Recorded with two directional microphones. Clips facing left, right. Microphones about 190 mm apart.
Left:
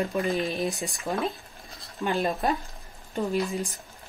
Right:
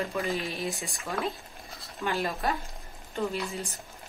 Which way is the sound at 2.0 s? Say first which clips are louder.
Left 4 dB; 20° left (ahead or behind).